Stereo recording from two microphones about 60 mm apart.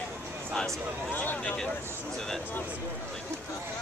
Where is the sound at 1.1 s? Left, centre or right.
Left.